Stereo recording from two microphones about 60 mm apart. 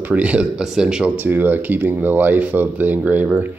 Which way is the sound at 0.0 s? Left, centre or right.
Right.